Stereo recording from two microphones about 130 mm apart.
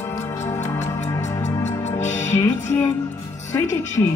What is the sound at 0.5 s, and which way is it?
Music, 15° left (ahead or behind).